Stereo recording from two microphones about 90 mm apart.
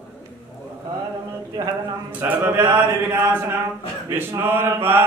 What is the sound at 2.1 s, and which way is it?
Mantra, 20° right (ahead or behind).